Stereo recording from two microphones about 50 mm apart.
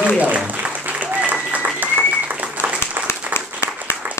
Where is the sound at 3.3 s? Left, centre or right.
Left.